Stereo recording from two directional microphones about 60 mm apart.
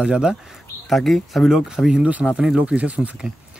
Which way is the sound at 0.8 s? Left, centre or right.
Centre.